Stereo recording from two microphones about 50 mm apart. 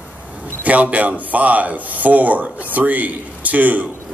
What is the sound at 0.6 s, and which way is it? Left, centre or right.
Speech, right.